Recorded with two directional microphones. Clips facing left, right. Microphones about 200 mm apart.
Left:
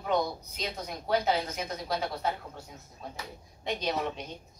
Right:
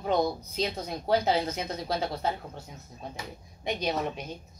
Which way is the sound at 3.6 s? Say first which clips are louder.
Right 2 dB; 10° right (ahead or behind).